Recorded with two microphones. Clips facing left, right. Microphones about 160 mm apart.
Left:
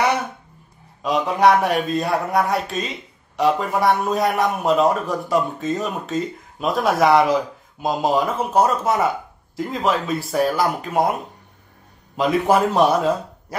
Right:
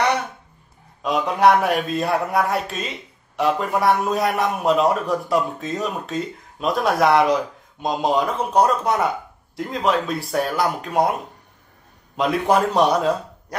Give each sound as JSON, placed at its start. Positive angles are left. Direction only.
{"t": 1.0, "sound": "speech", "side_deg": 0}
{"t": 12.2, "sound": "speech", "side_deg": 0}